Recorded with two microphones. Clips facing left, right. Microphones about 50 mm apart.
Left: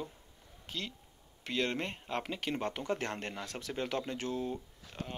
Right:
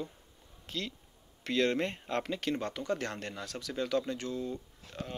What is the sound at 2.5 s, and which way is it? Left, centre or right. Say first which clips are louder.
Speech: right 1 dB; left.